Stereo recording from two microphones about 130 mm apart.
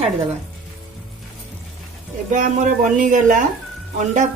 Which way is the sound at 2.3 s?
80° right.